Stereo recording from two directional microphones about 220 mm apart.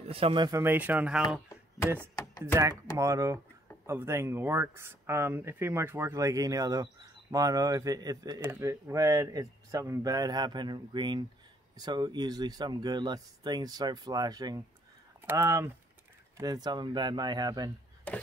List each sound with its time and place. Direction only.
0.0 s speech: 25° right (ahead or behind); by 1.4 s 5° right (ahead or behind)
2.0 s chopping: 15° left (ahead or behind)
2.4 s speech: 15° right (ahead or behind)